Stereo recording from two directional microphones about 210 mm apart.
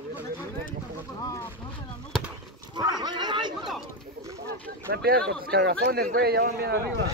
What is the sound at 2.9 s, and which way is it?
Speech, 20° right (ahead or behind).